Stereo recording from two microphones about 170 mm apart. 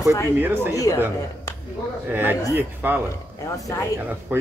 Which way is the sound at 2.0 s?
10° right (ahead or behind).